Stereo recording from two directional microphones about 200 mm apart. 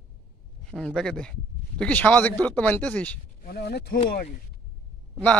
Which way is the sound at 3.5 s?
55° left (ahead or behind).